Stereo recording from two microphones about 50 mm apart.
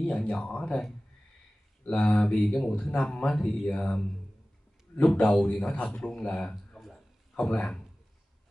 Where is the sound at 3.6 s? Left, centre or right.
Left.